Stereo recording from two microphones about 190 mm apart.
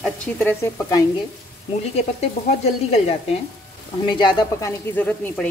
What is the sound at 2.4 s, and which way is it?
Speech, 35° left (ahead or behind).